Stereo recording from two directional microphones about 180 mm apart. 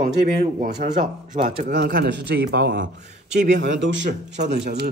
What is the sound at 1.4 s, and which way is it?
Speech, 50° right (ahead or behind).